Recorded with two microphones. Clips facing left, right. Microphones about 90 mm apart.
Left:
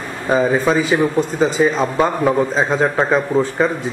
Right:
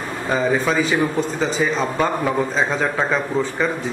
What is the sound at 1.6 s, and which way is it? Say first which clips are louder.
Speech: left 6 dB; 25° left (ahead or behind).